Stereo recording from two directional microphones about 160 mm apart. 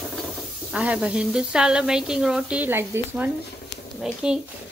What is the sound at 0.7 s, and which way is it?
Speech, 5° right (ahead or behind).